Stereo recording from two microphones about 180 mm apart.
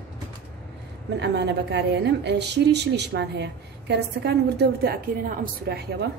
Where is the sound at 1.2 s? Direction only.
70° right (ahead or behind).